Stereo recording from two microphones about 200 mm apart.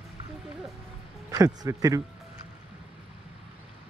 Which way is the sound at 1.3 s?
15° right (ahead or behind).